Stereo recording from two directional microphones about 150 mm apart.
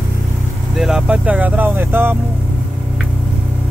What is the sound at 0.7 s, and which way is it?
Speech, 5° right (ahead or behind).